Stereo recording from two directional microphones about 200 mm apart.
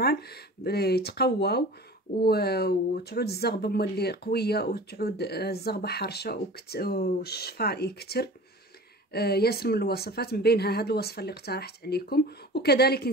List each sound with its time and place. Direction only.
0.0 s speech: 50° left (ahead or behind)